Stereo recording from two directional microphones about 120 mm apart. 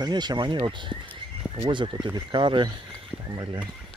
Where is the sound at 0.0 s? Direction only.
35° right (ahead or behind).